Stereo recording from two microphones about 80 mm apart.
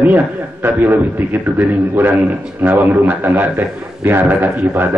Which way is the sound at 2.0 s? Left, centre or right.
Right.